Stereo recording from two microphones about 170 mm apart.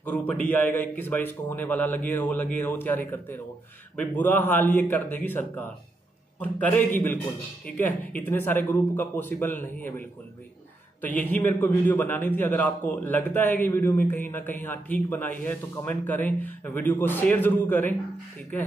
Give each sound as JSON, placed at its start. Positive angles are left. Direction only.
{"t": 0.5, "sound": "a man's voice", "side_deg": 10}